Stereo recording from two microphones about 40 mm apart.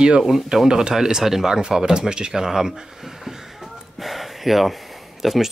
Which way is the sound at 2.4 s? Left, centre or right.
Centre.